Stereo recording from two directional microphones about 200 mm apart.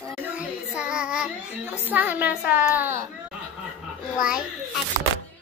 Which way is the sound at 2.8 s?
10° right (ahead or behind).